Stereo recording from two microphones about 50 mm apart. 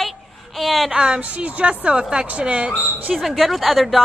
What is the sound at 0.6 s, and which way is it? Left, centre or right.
Speech, centre.